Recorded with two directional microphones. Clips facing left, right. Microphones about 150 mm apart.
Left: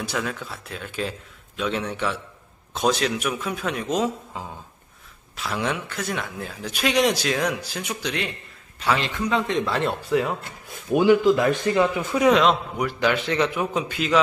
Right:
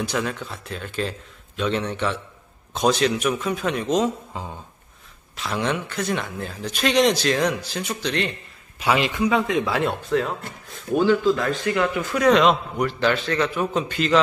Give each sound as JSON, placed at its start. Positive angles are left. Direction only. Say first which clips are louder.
{"t": 0.0, "sound": "speech", "louder": "right 3 dB", "side_deg": 0}
{"t": 8.7, "sound": "speech", "louder": "right 3 dB", "side_deg": -10}
{"t": 12.3, "sound": "a man's voice", "louder": "right 2 dB", "side_deg": 5}